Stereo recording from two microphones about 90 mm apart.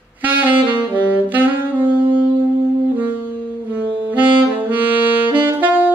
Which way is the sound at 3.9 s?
20° right (ahead or behind).